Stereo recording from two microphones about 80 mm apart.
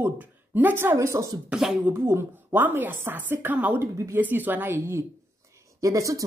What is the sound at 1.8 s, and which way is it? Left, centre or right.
A woman's voice, right.